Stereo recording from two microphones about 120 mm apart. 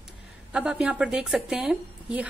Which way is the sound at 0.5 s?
5° right (ahead or behind).